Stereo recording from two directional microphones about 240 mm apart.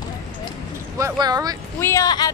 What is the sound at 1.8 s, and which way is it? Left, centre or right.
Speech, centre.